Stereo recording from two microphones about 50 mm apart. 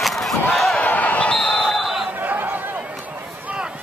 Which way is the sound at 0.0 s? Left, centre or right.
Centre.